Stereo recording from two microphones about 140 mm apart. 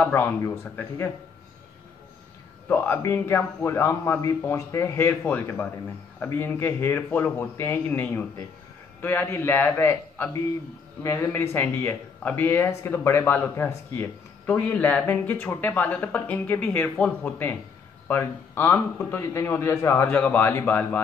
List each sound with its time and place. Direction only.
0.0 s speech: 15° left (ahead or behind)
2.7 s speech: 15° left (ahead or behind)